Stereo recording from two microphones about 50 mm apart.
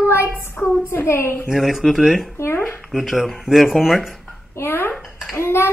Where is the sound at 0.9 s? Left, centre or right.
Left.